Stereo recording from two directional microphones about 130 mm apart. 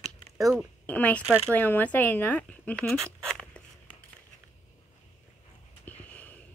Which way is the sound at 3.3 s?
10° left (ahead or behind).